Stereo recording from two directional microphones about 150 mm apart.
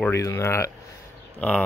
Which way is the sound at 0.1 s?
20° left (ahead or behind).